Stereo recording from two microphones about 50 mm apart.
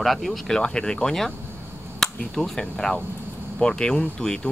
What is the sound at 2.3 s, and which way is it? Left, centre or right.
Speech, centre.